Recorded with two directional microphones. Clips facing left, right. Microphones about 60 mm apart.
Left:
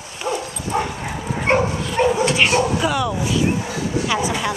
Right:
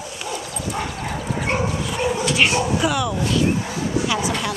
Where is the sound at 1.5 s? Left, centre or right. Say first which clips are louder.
Left 7 dB; left.